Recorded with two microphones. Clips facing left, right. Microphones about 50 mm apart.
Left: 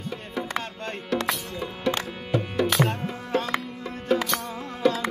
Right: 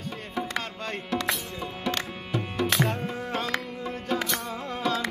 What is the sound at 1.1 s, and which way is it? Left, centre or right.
Music, centre.